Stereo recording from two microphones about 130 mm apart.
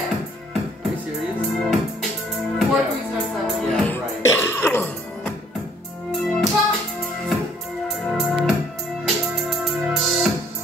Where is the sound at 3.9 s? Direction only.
20° left (ahead or behind).